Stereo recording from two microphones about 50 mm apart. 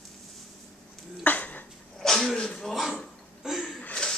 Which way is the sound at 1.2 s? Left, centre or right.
Left.